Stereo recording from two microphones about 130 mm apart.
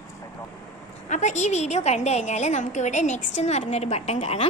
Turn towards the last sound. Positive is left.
turn(degrees=55)  # may be behind; listen again after turning